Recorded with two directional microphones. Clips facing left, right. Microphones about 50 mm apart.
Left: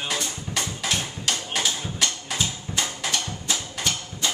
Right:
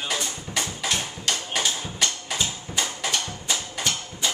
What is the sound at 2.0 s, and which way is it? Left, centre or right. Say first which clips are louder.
Music: even; centre.